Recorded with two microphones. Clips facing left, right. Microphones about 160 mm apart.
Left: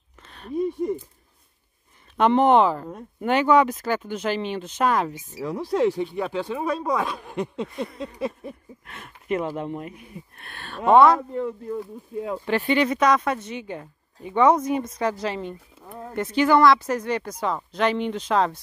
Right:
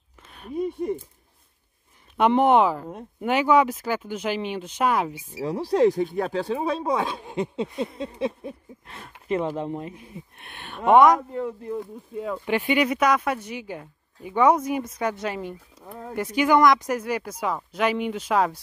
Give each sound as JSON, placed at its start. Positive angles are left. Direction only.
{"t": 0.3, "sound": "speech", "side_deg": -10}
{"t": 2.1, "sound": "speech", "side_deg": -10}
{"t": 5.4, "sound": "speech", "side_deg": -35}